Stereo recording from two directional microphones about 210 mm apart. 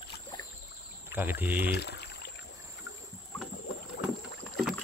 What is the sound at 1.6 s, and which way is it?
Pour, 50° left (ahead or behind).